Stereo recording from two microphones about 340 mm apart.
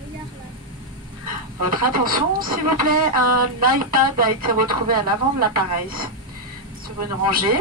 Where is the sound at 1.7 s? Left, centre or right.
Right.